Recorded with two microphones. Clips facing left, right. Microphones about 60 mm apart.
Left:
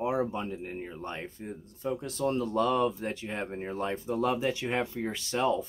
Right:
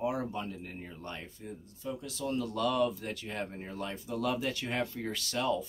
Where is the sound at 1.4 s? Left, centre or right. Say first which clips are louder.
Left 5 dB; left.